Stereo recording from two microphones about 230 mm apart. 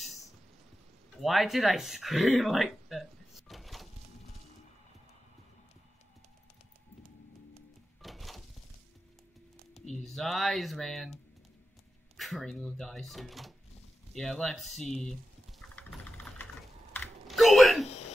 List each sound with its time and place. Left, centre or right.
1.2 s speech: centre
8.0 s a sound: centre
10.0 s speech: centre
12.2 s speech: centre
15.7 s vehicle: centre
16.9 s typing: centre
17.8 s a sound: left